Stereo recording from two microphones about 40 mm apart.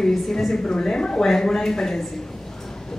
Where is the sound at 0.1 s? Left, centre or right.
Centre.